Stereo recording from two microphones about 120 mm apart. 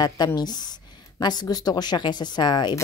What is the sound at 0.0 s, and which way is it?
A woman's voice, 35° left (ahead or behind).